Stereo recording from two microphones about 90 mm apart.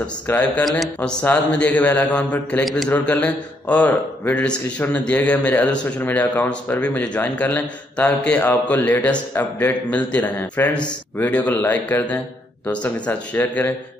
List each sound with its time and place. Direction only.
0.3 s a man's voice: 15° left (ahead or behind)
0.7 s a sound: centre (ahead or behind)
1.2 s a man's voice: 15° left (ahead or behind)